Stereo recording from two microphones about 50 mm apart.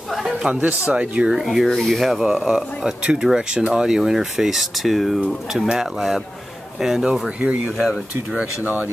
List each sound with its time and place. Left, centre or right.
0.1 s a sound: centre
0.5 s speech: right
1.3 s speech: centre
2.2 s speech: centre
7.2 s speech: right
7.7 s speech: centre